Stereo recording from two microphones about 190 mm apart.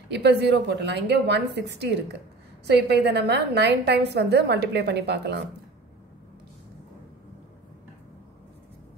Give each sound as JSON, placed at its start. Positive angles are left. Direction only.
{"t": 0.1, "sound": "a woman's voice", "side_deg": -60}